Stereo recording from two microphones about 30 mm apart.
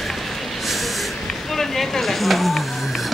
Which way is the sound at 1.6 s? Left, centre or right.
Centre.